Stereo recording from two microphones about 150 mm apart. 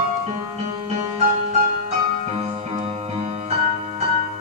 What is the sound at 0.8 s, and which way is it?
Music, 50° right (ahead or behind).